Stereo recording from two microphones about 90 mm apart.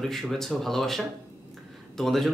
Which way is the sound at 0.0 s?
Centre (ahead or behind).